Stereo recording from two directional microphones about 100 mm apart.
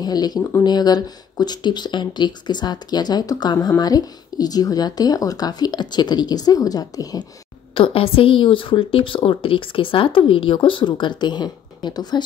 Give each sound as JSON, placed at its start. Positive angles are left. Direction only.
{"t": 0.0, "sound": "speech", "side_deg": 40}
{"t": 0.4, "sound": "speech", "side_deg": 20}
{"t": 0.7, "sound": "speech", "side_deg": 45}
{"t": 7.7, "sound": "a woman's voice", "side_deg": 65}